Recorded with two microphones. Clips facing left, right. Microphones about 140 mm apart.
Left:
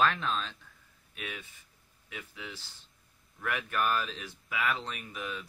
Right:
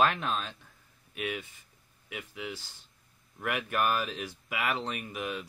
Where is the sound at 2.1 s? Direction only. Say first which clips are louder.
Right 5 dB; 15° right (ahead or behind).